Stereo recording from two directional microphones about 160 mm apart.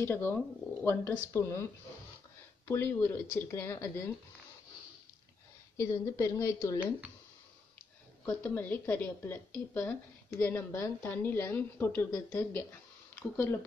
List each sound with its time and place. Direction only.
0.0 s a woman's voice: 15° left (ahead or behind)
2.7 s a woman's voice: 15° left (ahead or behind)
5.8 s a woman's voice: 20° left (ahead or behind)
8.3 s a woman's voice: 10° left (ahead or behind)